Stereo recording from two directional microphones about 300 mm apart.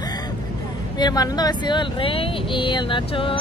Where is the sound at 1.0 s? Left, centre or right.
Centre.